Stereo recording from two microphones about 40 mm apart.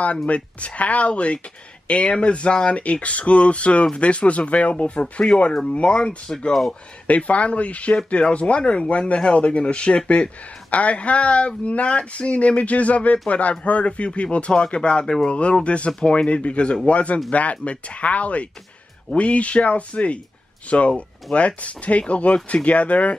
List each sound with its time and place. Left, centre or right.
0.3 s speech: left
5.5 s speech: centre
7.1 s speech: left